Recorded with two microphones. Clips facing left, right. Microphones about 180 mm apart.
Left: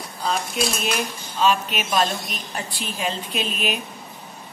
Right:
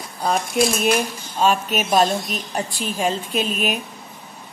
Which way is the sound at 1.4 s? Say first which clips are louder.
Right 2 dB; 45° right (ahead or behind).